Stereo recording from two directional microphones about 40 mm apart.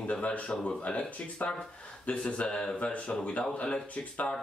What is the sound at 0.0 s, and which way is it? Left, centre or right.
Speech, left.